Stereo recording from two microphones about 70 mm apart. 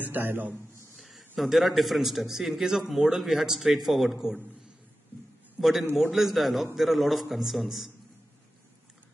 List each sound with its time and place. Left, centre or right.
0.0 s a man's voice: right
0.9 s a man's voice: centre
5.6 s a man's voice: centre